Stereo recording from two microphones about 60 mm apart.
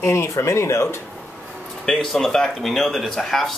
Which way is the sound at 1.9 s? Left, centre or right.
Centre.